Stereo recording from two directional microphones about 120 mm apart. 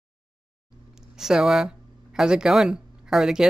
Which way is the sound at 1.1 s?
5° right (ahead or behind).